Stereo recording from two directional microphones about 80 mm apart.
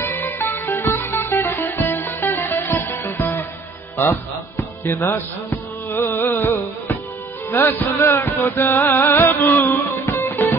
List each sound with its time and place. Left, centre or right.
0.0 s music: left